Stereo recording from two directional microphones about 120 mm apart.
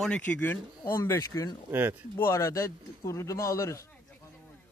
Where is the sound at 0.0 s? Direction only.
10° left (ahead or behind); by 1.6 s 30° left (ahead or behind).